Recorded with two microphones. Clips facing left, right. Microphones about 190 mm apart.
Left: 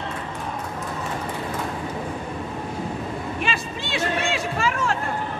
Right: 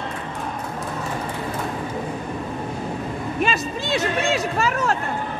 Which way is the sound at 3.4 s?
40° right (ahead or behind).